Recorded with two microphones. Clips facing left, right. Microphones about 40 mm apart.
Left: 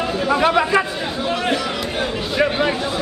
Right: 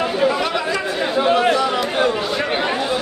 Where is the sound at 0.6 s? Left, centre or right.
Left.